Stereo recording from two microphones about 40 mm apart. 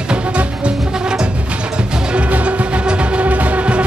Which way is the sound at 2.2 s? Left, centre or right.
Right.